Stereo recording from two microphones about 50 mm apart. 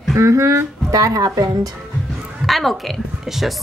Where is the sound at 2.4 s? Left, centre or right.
Centre.